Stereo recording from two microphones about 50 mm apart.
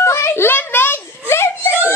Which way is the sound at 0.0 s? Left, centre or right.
Left.